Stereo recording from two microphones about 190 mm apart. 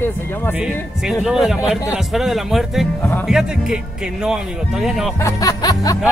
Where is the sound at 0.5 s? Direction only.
5° right (ahead or behind).